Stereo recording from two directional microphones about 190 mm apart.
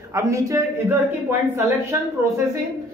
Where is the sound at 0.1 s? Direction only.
15° right (ahead or behind).